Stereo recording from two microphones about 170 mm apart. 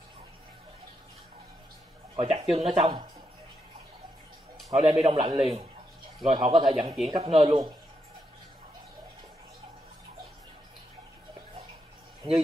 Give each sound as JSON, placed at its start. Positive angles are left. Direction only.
{"t": 2.1, "sound": "a man's voice", "side_deg": -35}
{"t": 4.7, "sound": "a man's voice", "side_deg": -30}